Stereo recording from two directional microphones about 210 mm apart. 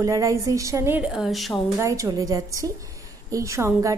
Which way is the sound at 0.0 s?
15° right (ahead or behind).